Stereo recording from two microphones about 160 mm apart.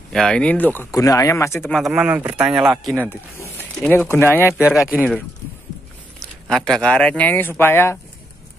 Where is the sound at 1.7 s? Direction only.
Centre (ahead or behind); by 4.7 s 15° left (ahead or behind).